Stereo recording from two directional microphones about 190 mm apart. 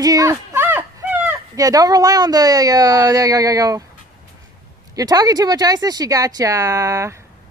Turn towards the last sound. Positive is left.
turn(degrees=-15)  # may be behind; listen again after turning